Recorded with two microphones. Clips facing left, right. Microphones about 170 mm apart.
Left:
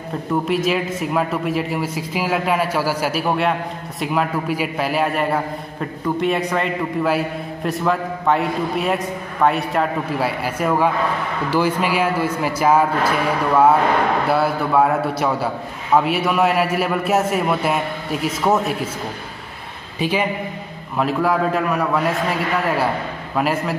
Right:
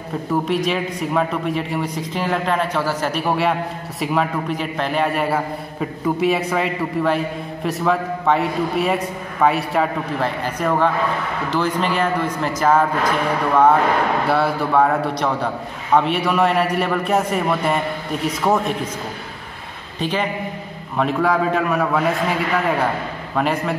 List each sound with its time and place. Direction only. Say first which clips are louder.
0.3 s a man's voice: left 1 dB; centre (ahead or behind)
14.2 s a man's voice: even; centre (ahead or behind)
20.0 s a man's voice: left 2 dB; 10° left (ahead or behind)